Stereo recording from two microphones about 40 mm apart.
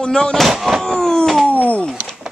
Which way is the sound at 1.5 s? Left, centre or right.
Left.